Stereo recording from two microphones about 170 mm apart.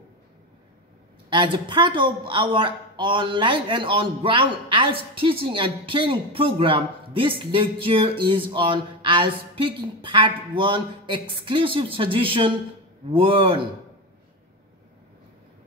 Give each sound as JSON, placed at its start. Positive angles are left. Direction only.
{"t": 1.3, "sound": "speech", "side_deg": -30}